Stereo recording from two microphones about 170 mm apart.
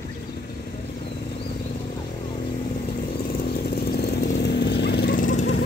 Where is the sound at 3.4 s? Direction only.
70° left (ahead or behind); by 5.6 s 50° left (ahead or behind).